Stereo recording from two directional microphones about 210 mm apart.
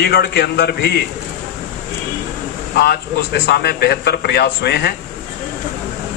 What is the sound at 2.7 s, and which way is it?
A man's voice, 50° left (ahead or behind).